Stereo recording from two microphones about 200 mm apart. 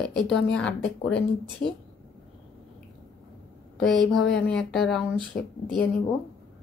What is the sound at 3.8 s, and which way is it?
Speech, centre (ahead or behind).